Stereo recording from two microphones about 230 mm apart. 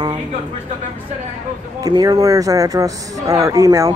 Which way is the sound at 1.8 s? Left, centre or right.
Centre.